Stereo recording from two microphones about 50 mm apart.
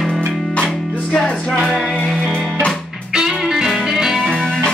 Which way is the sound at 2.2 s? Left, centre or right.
Right.